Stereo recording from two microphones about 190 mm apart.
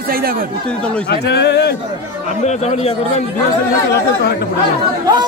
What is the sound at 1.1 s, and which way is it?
Speech, 60° left (ahead or behind).